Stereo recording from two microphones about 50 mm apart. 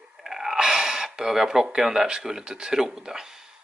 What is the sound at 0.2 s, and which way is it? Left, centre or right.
Speech, centre.